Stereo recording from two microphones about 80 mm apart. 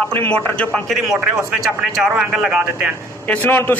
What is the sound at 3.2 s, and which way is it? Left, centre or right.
Speech, centre.